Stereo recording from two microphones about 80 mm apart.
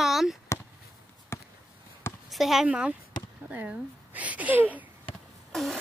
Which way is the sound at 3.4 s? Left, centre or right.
Centre.